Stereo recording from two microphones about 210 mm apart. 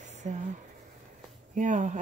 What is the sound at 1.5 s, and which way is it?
Speech, 35° right (ahead or behind).